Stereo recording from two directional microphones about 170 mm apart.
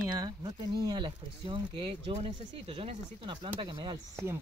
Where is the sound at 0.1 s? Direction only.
25° right (ahead or behind).